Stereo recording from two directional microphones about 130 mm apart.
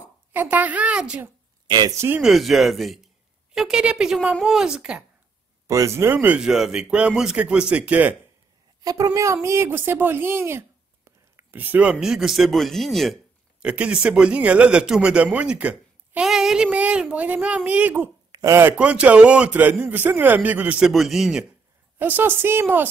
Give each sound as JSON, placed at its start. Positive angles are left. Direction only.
{"t": 0.3, "sound": "speech", "side_deg": -15}
{"t": 1.7, "sound": "speech", "side_deg": -35}
{"t": 2.0, "sound": "speech", "side_deg": -15}
{"t": 2.2, "sound": "a woman's voice", "side_deg": 0}
{"t": 5.7, "sound": "speech", "side_deg": -25}
{"t": 8.8, "sound": "speech", "side_deg": -25}
{"t": 21.9, "sound": "speech", "side_deg": -15}